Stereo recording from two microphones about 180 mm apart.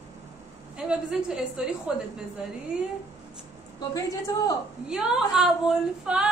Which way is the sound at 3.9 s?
20° left (ahead or behind).